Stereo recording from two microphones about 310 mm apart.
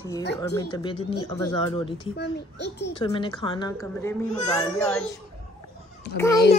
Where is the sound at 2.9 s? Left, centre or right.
Centre.